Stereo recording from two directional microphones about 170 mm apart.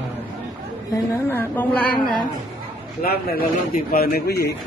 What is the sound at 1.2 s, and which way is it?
Speech, 15° left (ahead or behind).